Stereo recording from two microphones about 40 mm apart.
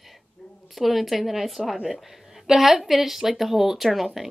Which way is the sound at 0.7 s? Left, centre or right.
Centre.